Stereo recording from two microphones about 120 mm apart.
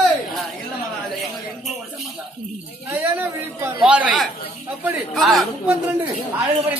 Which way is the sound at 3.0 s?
15° right (ahead or behind).